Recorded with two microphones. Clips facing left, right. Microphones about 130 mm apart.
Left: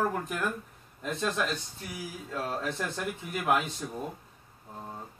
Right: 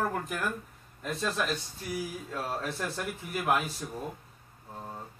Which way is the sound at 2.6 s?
5° right (ahead or behind).